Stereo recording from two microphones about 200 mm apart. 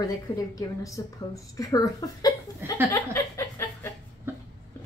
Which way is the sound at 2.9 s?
10° left (ahead or behind).